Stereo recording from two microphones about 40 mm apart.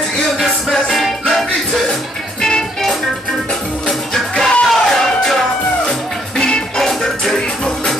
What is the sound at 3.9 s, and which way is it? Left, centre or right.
Music, centre.